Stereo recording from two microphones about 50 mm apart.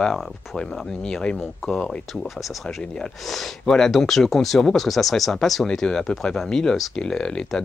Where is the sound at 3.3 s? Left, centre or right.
Centre.